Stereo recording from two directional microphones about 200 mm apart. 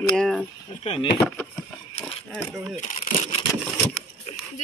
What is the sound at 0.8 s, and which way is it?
Speech, 30° left (ahead or behind).